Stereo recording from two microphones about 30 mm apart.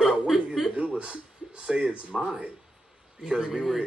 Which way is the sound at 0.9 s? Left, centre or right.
Right.